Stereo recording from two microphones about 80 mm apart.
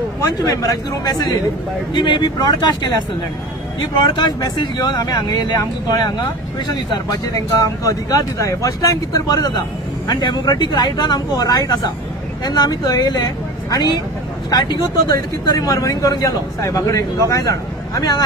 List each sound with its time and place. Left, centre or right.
0.2 s speech: left
2.0 s speech: left
4.0 s speech: left
10.0 s speech: left